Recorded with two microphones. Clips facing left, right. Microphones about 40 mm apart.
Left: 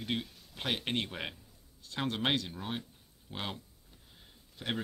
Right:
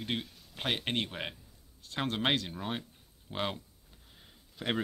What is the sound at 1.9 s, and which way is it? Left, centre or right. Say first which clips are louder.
A man's voice: right 1 dB; right.